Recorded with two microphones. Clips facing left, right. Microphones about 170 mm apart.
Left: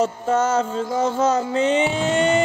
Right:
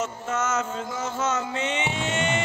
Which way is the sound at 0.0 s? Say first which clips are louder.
Left 8 dB; 35° left (ahead or behind).